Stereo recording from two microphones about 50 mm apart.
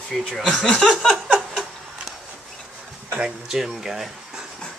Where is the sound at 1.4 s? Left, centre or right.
Centre.